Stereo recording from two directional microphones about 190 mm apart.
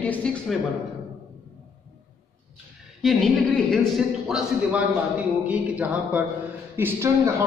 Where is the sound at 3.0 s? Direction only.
Centre (ahead or behind).